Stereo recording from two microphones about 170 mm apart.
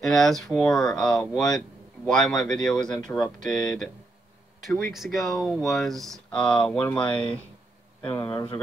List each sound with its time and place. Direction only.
0.0 s speech: centre (ahead or behind)
4.9 s speech: centre (ahead or behind)
8.1 s speech: 20° left (ahead or behind)